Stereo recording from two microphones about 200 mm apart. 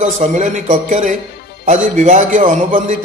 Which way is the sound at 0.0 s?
35° right (ahead or behind).